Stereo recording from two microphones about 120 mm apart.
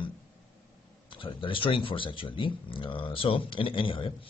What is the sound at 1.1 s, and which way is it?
Speech, 45° left (ahead or behind).